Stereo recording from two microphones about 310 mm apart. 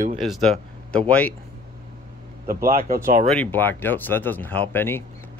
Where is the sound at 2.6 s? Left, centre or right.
Right.